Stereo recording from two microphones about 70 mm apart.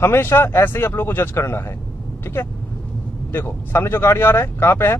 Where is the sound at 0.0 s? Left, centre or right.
Left.